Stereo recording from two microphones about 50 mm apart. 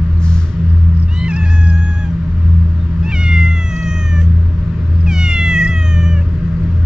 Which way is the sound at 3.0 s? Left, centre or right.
Centre.